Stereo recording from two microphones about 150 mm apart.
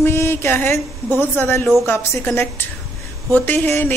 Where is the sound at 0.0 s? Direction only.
15° left (ahead or behind).